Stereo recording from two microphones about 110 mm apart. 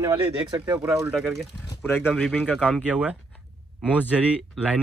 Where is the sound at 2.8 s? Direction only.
15° right (ahead or behind).